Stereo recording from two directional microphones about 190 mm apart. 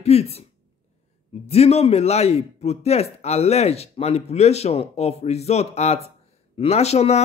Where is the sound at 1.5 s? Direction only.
30° left (ahead or behind).